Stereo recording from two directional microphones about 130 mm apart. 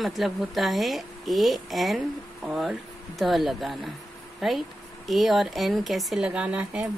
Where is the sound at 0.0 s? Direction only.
Centre (ahead or behind).